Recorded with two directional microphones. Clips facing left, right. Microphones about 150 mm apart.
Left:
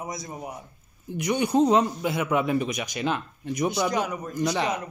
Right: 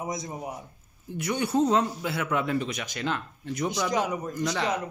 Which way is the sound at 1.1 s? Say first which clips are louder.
Left 3 dB; 15° left (ahead or behind).